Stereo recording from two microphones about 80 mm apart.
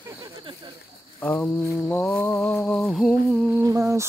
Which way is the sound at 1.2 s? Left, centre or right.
Centre.